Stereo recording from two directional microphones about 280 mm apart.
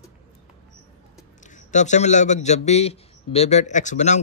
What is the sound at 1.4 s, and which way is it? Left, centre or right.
A man's voice, left.